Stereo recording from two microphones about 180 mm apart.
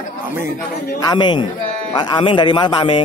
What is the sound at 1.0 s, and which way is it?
A man's voice, 25° left (ahead or behind).